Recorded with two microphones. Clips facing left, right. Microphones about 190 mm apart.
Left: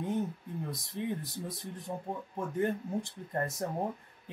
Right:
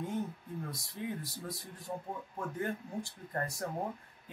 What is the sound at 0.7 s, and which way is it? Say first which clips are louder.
Speech: left 5 dB; 20° left (ahead or behind).